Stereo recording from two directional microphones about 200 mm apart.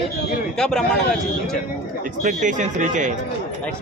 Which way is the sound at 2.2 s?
40° right (ahead or behind).